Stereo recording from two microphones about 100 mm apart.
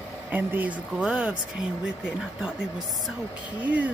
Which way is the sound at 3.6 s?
15° right (ahead or behind).